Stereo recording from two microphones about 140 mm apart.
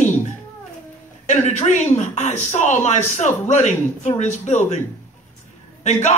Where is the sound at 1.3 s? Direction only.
55° left (ahead or behind).